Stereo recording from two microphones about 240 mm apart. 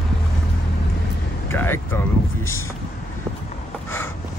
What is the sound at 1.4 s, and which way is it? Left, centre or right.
Speech, centre.